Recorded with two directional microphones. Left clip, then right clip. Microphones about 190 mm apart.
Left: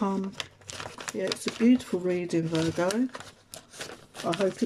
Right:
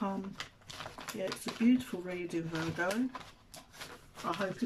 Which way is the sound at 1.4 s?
25° left (ahead or behind).